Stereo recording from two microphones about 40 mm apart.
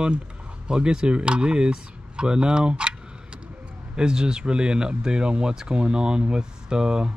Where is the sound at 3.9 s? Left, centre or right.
Right.